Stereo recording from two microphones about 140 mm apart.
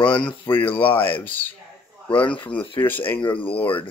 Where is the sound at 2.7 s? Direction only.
15° left (ahead or behind).